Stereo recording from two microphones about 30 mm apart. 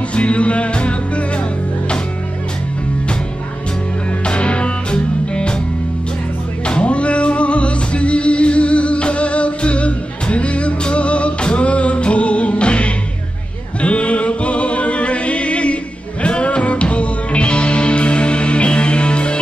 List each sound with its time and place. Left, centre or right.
0.1 s music: left
4.2 s music: left
6.6 s music: left